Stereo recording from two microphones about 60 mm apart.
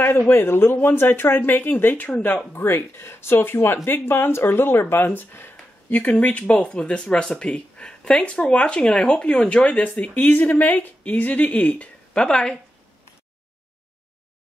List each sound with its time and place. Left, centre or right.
0.3 s speech: left
2.5 s speech: left; by 12.5 s centre